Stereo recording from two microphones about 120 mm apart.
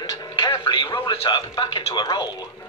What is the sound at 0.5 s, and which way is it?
Speech, 45° left (ahead or behind).